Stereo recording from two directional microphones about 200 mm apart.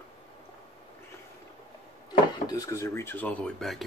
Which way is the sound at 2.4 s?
15° left (ahead or behind).